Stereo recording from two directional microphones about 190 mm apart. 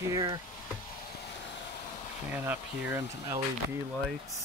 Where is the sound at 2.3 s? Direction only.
10° right (ahead or behind).